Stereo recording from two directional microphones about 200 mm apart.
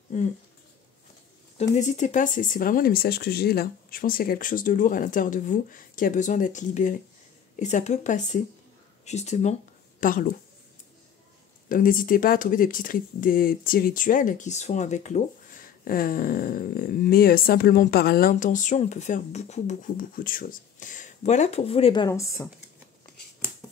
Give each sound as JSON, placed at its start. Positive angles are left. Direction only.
{"t": 0.1, "sound": "speech", "side_deg": 40}
{"t": 1.6, "sound": "speech", "side_deg": 35}
{"t": 11.7, "sound": "speech", "side_deg": 45}